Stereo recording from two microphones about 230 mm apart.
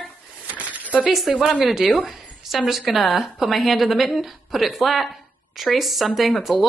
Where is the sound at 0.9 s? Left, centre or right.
Centre.